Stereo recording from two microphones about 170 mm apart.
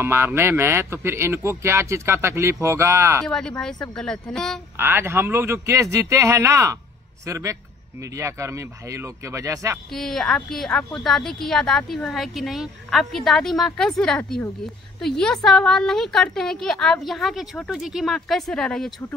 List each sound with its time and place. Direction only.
0.0 s speech: 15° right (ahead or behind)
3.3 s a woman's voice: 5° left (ahead or behind)
4.7 s speech: 15° right (ahead or behind)
9.9 s a woman's voice: 5° left (ahead or behind)